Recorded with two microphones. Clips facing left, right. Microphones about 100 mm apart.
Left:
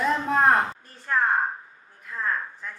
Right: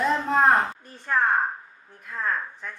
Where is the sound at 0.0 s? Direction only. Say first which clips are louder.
Right 1 dB; centre (ahead or behind).